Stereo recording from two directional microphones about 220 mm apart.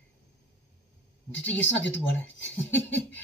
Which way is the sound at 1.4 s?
55° left (ahead or behind).